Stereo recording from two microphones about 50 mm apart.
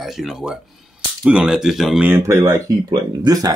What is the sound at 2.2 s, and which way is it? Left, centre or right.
Speech, right.